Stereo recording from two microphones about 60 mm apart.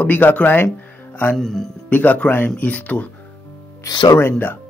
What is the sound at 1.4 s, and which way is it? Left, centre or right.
Speech, centre.